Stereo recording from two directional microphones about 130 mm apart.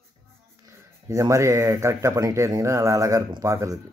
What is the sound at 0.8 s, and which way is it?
Speech, 25° right (ahead or behind).